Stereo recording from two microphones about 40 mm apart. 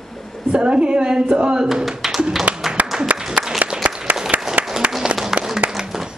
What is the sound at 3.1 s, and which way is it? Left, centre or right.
Applause, right.